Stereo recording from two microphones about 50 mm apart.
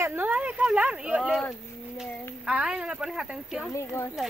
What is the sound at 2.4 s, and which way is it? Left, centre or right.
Speech, centre.